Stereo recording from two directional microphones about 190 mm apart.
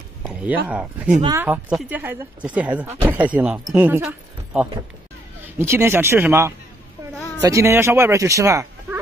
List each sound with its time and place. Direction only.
0.2 s speech: 5° right (ahead or behind)
5.6 s speech: 15° right (ahead or behind)
7.2 s a sound: 10° left (ahead or behind)
7.4 s speech: 15° right (ahead or behind)